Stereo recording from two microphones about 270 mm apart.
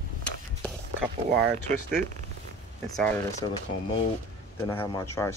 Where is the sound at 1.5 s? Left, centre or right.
Right.